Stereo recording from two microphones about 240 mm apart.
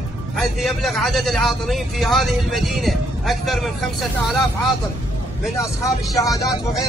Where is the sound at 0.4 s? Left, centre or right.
Centre.